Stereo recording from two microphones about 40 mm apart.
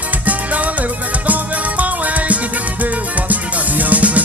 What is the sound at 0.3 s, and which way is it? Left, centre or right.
Music, right.